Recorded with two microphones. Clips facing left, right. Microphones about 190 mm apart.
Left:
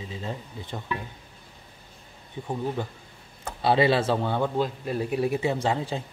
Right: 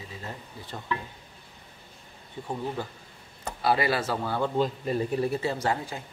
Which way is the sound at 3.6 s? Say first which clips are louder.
Left 4 dB; 25° left (ahead or behind).